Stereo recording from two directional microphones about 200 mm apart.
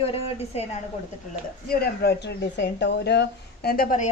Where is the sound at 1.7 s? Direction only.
55° left (ahead or behind).